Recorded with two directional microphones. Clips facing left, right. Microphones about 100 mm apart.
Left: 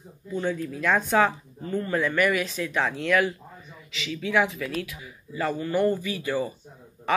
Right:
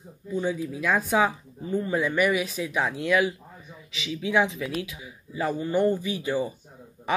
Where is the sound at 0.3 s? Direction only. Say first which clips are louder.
Even; 10° right (ahead or behind).